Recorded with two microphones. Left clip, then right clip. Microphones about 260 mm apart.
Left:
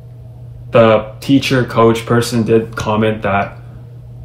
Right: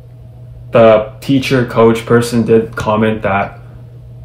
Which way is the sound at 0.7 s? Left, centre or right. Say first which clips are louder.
Right 3 dB; centre.